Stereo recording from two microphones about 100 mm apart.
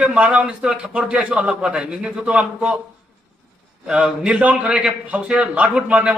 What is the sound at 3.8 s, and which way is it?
A man's voice, 10° right (ahead or behind).